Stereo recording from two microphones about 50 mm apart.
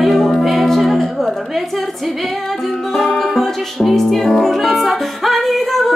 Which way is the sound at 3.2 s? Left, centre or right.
Centre.